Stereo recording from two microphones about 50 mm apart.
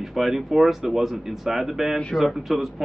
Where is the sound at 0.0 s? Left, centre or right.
Centre.